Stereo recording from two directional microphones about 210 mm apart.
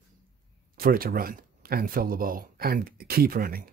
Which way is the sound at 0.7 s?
45° right (ahead or behind).